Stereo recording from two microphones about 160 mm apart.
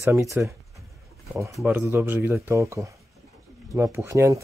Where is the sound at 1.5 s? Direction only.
10° right (ahead or behind).